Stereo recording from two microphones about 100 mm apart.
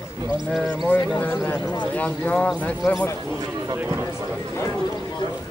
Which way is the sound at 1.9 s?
15° left (ahead or behind).